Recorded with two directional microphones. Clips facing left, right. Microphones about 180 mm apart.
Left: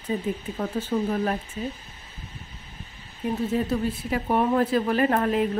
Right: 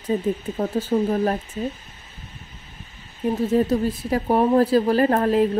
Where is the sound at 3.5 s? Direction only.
40° right (ahead or behind).